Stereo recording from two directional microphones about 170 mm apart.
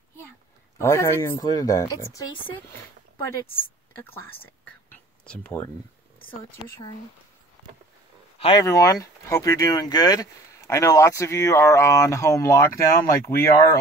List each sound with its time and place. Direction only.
0.7 s speech: 15° left (ahead or behind)
8.5 s speech: 20° left (ahead or behind)